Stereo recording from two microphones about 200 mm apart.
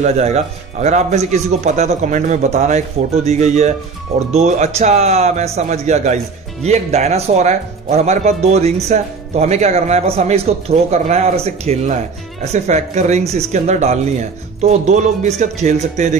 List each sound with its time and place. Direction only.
0.0 s a man's voice: 35° right (ahead or behind)